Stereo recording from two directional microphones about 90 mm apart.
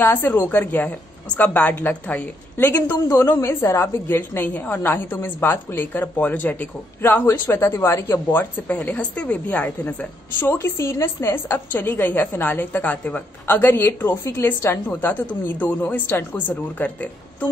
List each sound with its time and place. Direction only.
0.0 s a woman's voice: 20° left (ahead or behind)